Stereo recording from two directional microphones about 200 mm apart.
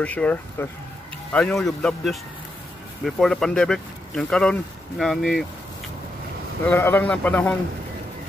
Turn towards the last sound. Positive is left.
turn(degrees=5)  # may be behind; listen again after turning